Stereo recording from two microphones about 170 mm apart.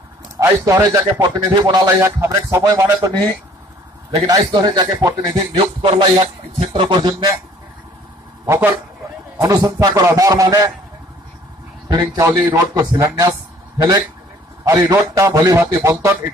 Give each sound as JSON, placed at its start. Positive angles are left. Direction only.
{"t": 0.4, "sound": "a man's voice", "side_deg": -20}
{"t": 4.3, "sound": "a man's voice", "side_deg": -25}
{"t": 9.4, "sound": "a man's voice", "side_deg": -20}
{"t": 11.9, "sound": "a man's voice", "side_deg": -20}
{"t": 14.6, "sound": "a man's voice", "side_deg": -20}